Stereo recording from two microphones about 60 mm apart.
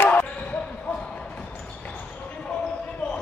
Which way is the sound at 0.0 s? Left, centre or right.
Left.